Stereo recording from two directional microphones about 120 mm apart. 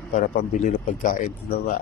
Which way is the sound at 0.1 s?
85° left.